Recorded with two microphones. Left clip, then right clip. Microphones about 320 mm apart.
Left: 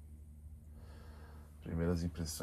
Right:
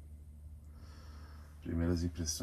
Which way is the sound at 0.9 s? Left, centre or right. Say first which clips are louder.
Even; centre.